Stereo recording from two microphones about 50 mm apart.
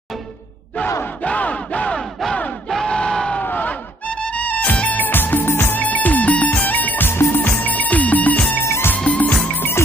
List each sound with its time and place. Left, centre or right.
1.2 s battle cry: left
2.7 s battle cry: centre
3.3 s a sound: left
4.1 s music: left
5.8 s music: left
7.1 s music: left
8.6 s music: left
8.9 s music: left